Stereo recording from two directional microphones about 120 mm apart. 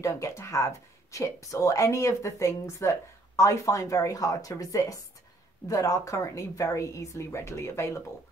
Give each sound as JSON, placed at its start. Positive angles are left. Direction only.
{"t": 0.0, "sound": "speech", "side_deg": 25}